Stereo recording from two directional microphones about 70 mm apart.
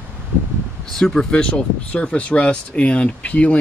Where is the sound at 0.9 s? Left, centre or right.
Centre.